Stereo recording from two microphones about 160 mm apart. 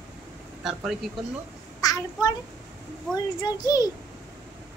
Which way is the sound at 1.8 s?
25° left (ahead or behind).